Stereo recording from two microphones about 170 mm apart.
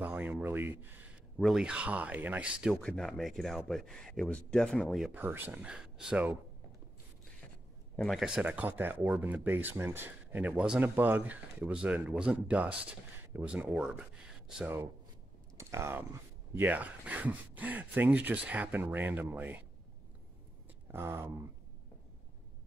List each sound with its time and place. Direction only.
0.0 s speech: 10° right (ahead or behind)
2.6 s speech: centre (ahead or behind)
7.9 s speech: 5° left (ahead or behind)
15.5 s speech: 15° right (ahead or behind)
20.9 s speech: 15° right (ahead or behind)